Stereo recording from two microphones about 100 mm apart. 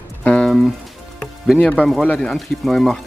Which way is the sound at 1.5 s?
15° left (ahead or behind).